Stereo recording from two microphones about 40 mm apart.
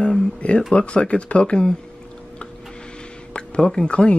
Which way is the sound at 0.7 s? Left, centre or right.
Left.